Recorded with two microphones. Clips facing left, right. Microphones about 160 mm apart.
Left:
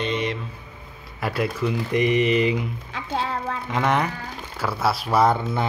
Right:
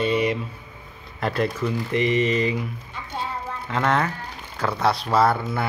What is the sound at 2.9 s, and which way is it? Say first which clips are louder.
Music: left 5 dB; 90° left.